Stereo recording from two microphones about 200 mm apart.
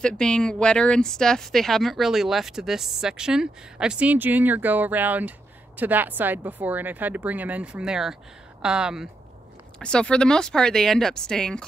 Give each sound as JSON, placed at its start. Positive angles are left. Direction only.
{"t": 0.0, "sound": "speech", "side_deg": 5}